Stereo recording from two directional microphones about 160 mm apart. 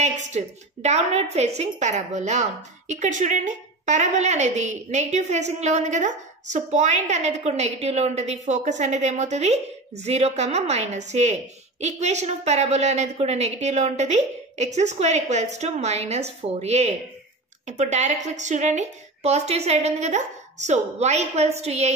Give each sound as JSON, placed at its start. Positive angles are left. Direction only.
{"t": 0.8, "sound": "a woman's voice", "side_deg": -45}